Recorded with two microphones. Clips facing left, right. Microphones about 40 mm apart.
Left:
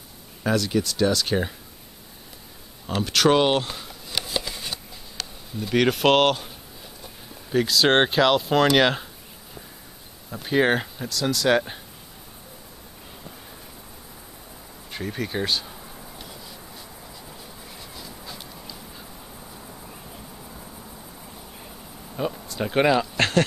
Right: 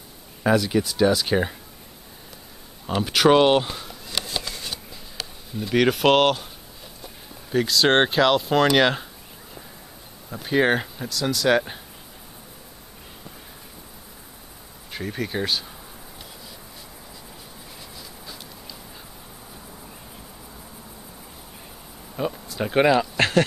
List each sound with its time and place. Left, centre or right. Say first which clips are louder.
0.4 s speech: right 3 dB; centre
2.9 s a sound: right 2 dB; centre
5.1 s speech: right 1 dB; centre
7.5 s speech: even; centre
10.3 s speech: even; centre
14.9 s speech: right 1 dB; centre
17.9 s a sound: left 3 dB; centre
22.1 s insect: right 1 dB; centre